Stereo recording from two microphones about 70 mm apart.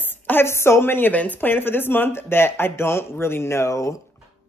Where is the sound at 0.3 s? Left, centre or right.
Left.